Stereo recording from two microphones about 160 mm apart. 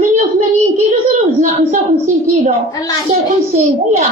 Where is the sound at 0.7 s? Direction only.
45° right (ahead or behind).